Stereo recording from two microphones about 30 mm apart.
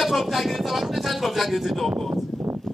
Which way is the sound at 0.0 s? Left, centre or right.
Centre.